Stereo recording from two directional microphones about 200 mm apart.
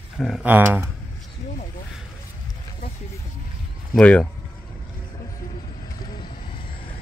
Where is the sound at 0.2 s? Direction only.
Centre (ahead or behind).